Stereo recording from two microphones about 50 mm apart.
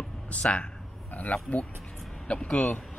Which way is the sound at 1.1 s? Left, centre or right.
Left.